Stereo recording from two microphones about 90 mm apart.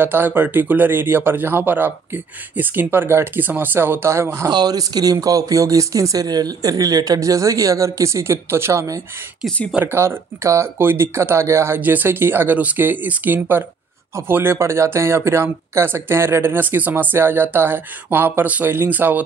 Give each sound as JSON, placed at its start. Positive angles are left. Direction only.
{"t": 0.0, "sound": "speech", "side_deg": -25}
{"t": 4.5, "sound": "speech", "side_deg": -50}